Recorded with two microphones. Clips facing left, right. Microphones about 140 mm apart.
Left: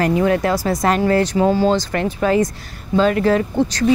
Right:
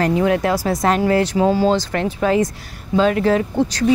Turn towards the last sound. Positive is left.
turn(degrees=-5)  # may be behind; listen again after turning